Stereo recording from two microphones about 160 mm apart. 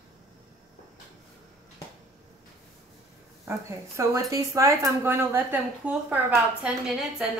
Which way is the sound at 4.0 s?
20° right (ahead or behind).